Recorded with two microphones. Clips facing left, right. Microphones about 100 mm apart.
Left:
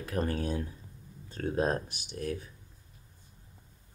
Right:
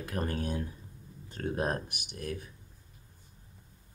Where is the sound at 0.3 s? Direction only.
25° left (ahead or behind).